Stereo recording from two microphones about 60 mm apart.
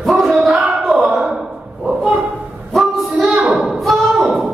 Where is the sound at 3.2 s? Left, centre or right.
Centre.